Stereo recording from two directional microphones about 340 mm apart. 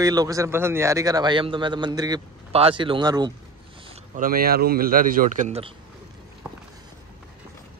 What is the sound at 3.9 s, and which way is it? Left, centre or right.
Speech, right.